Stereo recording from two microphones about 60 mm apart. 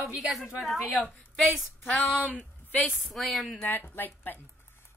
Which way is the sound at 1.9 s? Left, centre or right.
Centre.